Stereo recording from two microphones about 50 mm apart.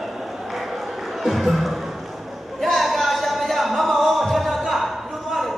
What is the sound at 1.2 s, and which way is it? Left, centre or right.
Music, centre.